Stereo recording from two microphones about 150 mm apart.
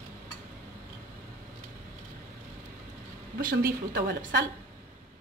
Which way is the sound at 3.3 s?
90° right.